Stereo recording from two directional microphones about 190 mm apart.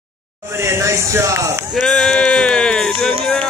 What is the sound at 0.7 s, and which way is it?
Speech, 15° right (ahead or behind).